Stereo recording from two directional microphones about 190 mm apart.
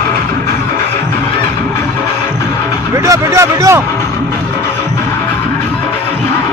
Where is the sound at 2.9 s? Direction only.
15° right (ahead or behind).